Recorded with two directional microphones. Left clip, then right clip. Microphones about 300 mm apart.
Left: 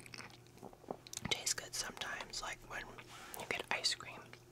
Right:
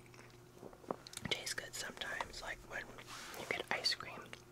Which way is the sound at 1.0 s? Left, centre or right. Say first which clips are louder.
Left 4 dB; centre.